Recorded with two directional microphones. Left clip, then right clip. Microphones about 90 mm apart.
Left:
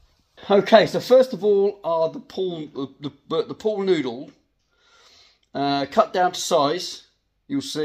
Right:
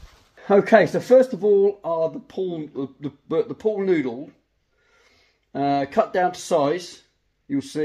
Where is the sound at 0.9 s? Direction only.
55° right (ahead or behind).